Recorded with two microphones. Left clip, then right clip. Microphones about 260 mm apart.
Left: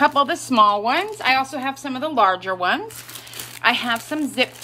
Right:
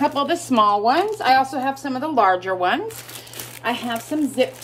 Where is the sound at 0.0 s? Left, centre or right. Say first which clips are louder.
Left 3 dB; centre.